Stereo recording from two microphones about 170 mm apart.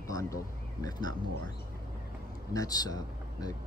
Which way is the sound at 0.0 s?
20° left (ahead or behind).